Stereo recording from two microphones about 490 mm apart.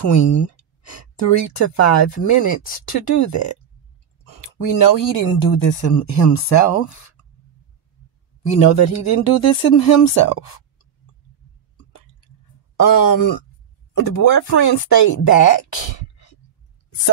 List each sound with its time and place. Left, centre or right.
0.0 s speech: left
8.5 s speech: left
12.8 s speech: left